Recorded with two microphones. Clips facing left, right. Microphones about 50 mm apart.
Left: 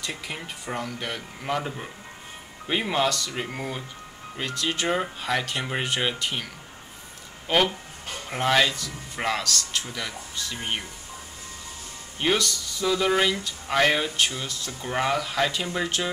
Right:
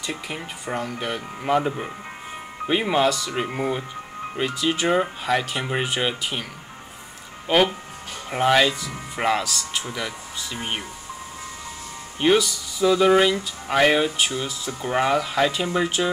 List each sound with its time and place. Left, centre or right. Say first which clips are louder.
0.0 s speech: right 3 dB; centre
2.7 s speech: right 4 dB; centre
3.4 s speech: right 7 dB; right
4.4 s speech: right 5 dB; centre
7.4 s speech: right 3 dB; centre
12.2 s speech: right 5 dB; centre
14.7 s speech: right 4 dB; centre